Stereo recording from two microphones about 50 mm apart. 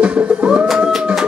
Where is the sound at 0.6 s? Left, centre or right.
Centre.